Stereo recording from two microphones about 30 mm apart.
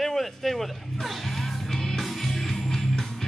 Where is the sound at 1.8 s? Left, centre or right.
Centre.